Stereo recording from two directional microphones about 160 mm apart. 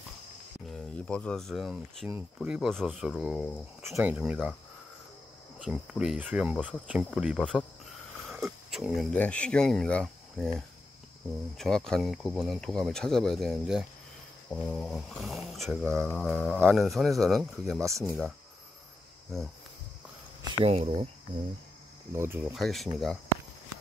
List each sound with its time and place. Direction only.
0.7 s speech: 5° left (ahead or behind)
2.0 s speech: 10° right (ahead or behind)
5.6 s speech: 5° right (ahead or behind)
6.5 s speech: 5° left (ahead or behind)
8.3 s a sound: 5° right (ahead or behind)
9.1 s speech: 10° left (ahead or behind)
17.7 s speech: 20° right (ahead or behind)
20.6 s speech: 35° right (ahead or behind)
22.1 s speech: 15° right (ahead or behind)
22.5 s speech: centre (ahead or behind)